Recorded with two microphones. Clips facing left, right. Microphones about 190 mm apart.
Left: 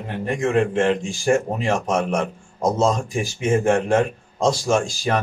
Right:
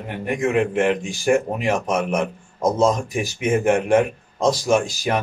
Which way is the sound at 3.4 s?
15° right (ahead or behind).